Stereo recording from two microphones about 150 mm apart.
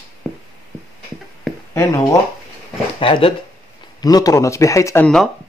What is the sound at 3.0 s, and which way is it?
Speech, 35° left (ahead or behind).